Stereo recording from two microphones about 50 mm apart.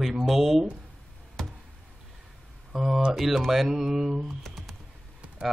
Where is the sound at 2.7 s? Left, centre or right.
Centre.